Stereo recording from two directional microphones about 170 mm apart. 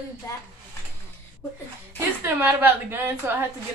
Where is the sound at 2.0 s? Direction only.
15° right (ahead or behind).